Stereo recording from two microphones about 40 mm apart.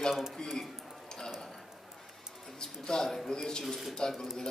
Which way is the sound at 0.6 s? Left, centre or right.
Centre.